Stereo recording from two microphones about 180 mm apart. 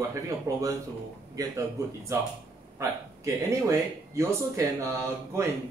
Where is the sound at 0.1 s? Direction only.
20° right (ahead or behind).